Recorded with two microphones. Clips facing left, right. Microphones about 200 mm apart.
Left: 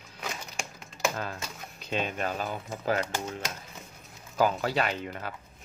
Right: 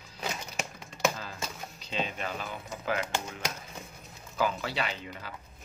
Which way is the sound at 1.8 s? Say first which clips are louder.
Left 4 dB; 55° left (ahead or behind).